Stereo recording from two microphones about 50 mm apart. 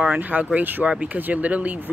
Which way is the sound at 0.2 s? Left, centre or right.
Right.